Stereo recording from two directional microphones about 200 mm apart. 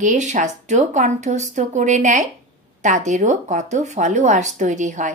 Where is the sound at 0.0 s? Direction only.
35° right (ahead or behind).